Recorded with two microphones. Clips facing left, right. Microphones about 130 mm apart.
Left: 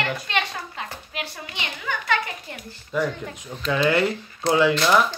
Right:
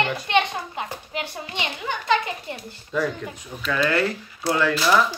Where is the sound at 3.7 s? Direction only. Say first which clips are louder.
Left 2 dB; 20° left (ahead or behind).